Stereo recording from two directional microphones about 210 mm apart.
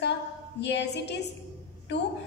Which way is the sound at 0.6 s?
55° left (ahead or behind).